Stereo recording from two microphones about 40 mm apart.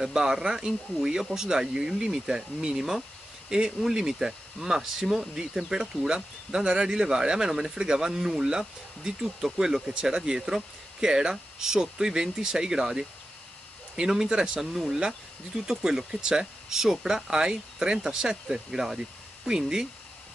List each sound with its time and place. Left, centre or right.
0.0 s speech: centre
15.0 s speech: centre